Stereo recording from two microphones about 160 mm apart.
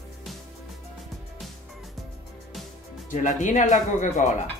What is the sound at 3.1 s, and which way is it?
Speech, 50° left (ahead or behind).